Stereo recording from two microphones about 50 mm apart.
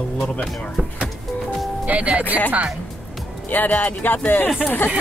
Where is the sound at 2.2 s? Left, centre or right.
Left.